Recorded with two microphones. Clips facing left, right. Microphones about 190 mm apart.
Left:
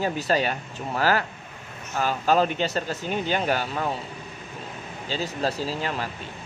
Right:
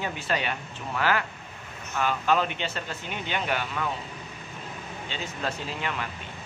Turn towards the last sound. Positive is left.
turn(degrees=35)  # may be behind; listen again after turning